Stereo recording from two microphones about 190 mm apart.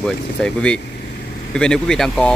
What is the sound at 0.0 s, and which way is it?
Speech, 5° left (ahead or behind).